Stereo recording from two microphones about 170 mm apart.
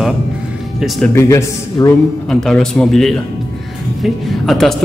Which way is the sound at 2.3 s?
5° left (ahead or behind).